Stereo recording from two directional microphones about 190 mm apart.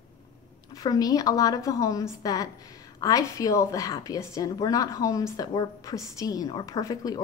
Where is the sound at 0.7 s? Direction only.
20° left (ahead or behind).